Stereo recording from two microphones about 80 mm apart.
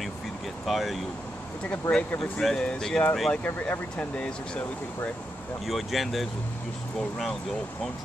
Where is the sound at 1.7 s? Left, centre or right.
Centre.